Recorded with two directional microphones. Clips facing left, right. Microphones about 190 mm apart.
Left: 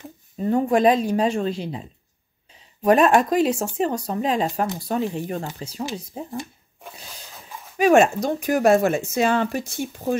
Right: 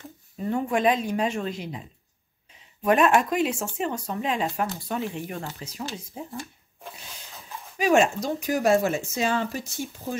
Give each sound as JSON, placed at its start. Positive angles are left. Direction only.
{"t": 0.4, "sound": "speech", "side_deg": 35}
{"t": 7.7, "sound": "speech", "side_deg": 55}